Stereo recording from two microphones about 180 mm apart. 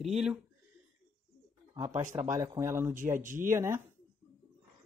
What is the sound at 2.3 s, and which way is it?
Speech, 20° right (ahead or behind).